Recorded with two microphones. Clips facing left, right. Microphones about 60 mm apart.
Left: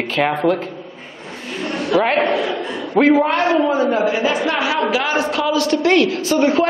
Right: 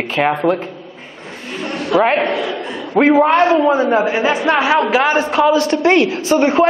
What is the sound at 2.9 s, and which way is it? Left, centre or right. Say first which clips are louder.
A woman's voice: right 3 dB; right.